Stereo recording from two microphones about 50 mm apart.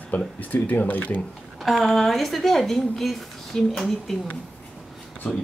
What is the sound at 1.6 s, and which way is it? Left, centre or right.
A woman's voice, centre.